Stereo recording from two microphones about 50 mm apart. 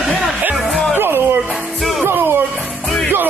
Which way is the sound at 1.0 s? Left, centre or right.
Right.